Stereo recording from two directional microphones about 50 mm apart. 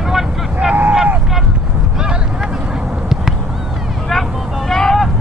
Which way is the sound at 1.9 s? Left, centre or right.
Centre.